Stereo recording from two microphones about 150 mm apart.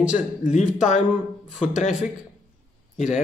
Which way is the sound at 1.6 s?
55° left (ahead or behind).